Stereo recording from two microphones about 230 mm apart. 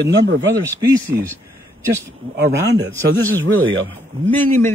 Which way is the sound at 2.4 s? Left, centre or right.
Right.